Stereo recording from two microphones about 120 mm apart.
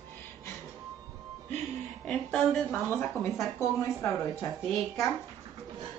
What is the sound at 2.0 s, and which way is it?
Speech, 5° left (ahead or behind).